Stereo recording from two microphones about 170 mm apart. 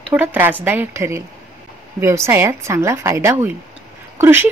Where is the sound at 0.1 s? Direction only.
10° right (ahead or behind).